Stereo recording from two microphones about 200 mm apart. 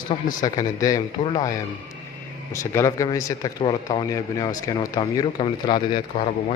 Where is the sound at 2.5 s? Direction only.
15° left (ahead or behind).